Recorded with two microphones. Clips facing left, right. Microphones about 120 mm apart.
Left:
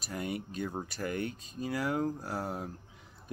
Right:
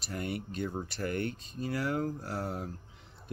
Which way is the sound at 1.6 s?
15° left (ahead or behind).